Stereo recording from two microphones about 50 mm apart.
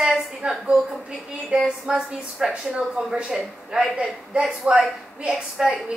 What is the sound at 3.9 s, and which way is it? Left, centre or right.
A woman's voice, centre.